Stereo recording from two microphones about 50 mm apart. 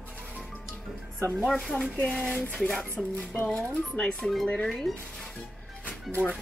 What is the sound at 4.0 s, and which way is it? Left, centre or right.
Music, centre.